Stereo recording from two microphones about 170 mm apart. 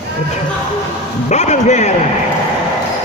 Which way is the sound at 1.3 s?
45° left (ahead or behind).